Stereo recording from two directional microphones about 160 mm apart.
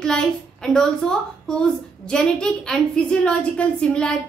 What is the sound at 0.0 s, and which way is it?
A woman's voice, 5° left (ahead or behind).